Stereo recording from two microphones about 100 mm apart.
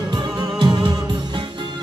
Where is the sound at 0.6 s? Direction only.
50° right (ahead or behind).